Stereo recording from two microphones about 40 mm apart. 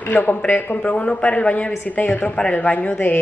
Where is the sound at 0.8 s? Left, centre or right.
Left.